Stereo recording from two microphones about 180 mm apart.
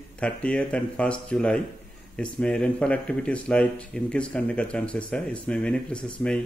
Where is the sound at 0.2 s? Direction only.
5° left (ahead or behind).